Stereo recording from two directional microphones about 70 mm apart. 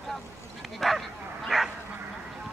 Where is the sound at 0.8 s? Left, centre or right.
Centre.